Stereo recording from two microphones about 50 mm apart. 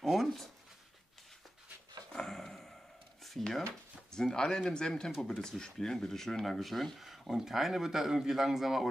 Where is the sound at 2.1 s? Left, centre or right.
Centre.